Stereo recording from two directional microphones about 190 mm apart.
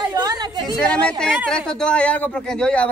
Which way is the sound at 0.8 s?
5° left (ahead or behind).